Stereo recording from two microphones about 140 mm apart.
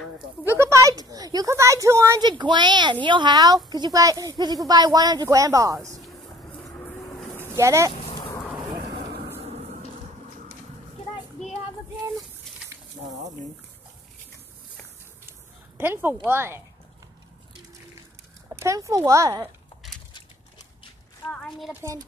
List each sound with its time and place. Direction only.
0.6 s a woman's voice: 20° right (ahead or behind)
2.2 s a woman's voice: 35° right (ahead or behind)
7.5 s a woman's voice: 20° right (ahead or behind)
15.8 s speech: 15° right (ahead or behind)
18.5 s a woman's voice: 20° right (ahead or behind)
21.3 s a sound: 5° left (ahead or behind)